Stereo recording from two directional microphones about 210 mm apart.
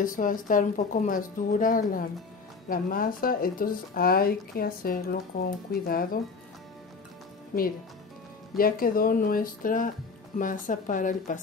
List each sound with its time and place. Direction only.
0.0 s speech: 40° left (ahead or behind)
8.5 s speech: 45° left (ahead or behind)